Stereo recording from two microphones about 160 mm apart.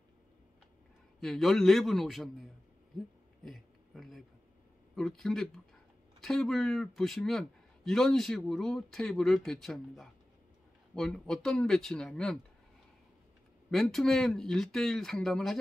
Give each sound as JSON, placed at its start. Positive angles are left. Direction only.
{"t": 1.2, "sound": "a man's voice", "side_deg": 0}
{"t": 3.4, "sound": "a sound", "side_deg": 0}
{"t": 4.9, "sound": "a man's voice", "side_deg": 0}
{"t": 13.7, "sound": "a man's voice", "side_deg": 0}